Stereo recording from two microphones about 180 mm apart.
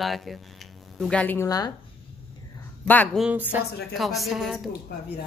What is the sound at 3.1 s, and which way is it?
A woman's voice, 10° right (ahead or behind).